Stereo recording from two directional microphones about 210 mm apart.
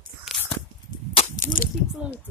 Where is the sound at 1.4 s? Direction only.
40° left (ahead or behind).